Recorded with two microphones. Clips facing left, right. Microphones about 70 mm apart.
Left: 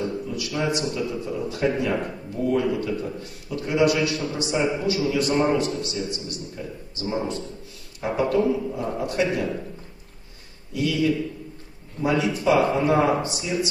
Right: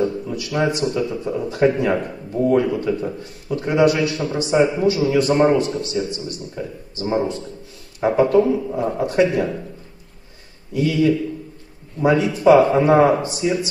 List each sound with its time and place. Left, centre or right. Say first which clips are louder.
0.0 s a man's voice: right 5 dB; right
10.7 s a man's voice: right 5 dB; right